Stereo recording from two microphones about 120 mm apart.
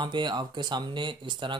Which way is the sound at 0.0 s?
40° right (ahead or behind).